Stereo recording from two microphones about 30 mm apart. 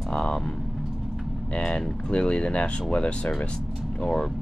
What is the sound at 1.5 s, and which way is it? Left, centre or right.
Speech, left.